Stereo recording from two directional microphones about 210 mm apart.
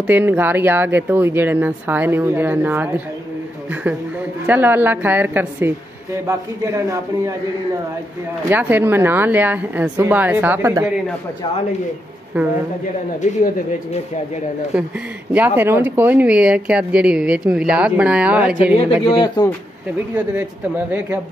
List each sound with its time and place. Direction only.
0.0 s speech: 10° right (ahead or behind)
4.5 s speech: 10° right (ahead or behind)
8.5 s speech: 10° right (ahead or behind)
12.3 s speech: 10° right (ahead or behind)
15.3 s speech: 10° right (ahead or behind)
19.0 s speech: 20° left (ahead or behind)
20.2 s speech: 10° right (ahead or behind)